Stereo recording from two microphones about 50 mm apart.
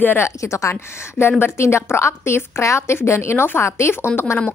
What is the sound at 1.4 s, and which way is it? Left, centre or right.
A woman's voice, left.